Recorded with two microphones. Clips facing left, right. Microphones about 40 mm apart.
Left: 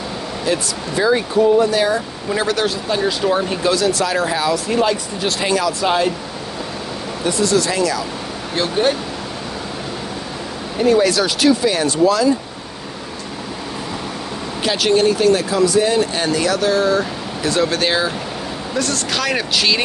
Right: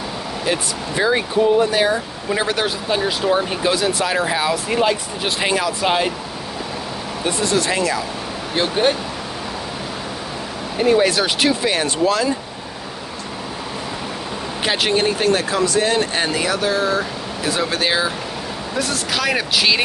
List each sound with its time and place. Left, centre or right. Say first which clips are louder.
0.5 s speech: left 2 dB; right
7.2 s speech: left 2 dB; right
8.8 s speech: left 1 dB; right
10.8 s speech: left 1 dB; right
14.6 s speech: left 3 dB; right
16.2 s speech: left 2 dB; centre